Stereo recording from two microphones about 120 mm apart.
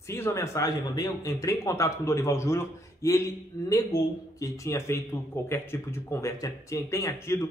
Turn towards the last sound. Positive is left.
turn(degrees=25)  # may be behind; listen again after turning